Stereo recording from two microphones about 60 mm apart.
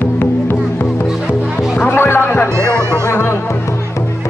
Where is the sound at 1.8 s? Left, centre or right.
Left.